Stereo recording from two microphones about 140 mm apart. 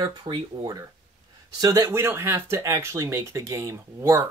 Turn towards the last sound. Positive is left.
turn(degrees=-20)  # may be behind; listen again after turning